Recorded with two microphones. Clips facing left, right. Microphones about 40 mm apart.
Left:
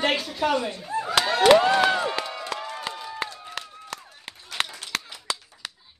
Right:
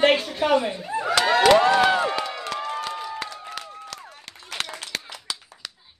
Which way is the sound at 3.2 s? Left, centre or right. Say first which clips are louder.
Even; left.